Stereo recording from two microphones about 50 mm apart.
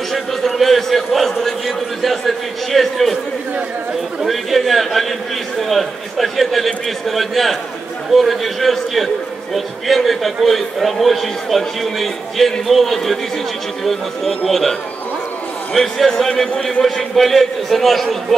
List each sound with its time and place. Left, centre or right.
0.1 s a man's voice: centre
4.2 s a man's voice: centre